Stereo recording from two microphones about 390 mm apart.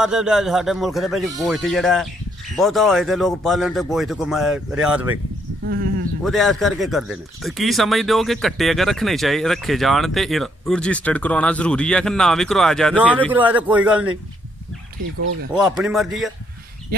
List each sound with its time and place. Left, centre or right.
0.0 s speech: centre
6.2 s speech: centre
15.5 s speech: centre